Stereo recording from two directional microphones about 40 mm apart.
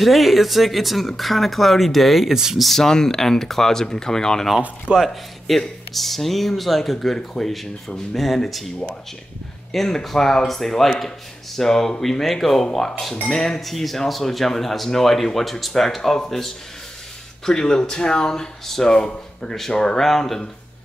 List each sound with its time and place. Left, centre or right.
0.0 s speech: centre
2.3 s speech: centre
2.6 s speech: centre
4.9 s speech: centre
9.7 s speech: centre
17.5 s speech: centre
18.9 s speech: left
20.1 s speech: centre